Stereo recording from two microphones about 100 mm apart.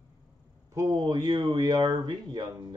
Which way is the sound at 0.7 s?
35° right (ahead or behind).